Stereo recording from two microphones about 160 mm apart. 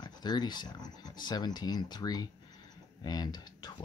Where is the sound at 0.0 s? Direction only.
25° left (ahead or behind).